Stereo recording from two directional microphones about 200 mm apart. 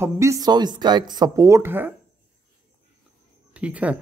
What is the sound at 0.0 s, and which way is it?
Speech, 15° right (ahead or behind).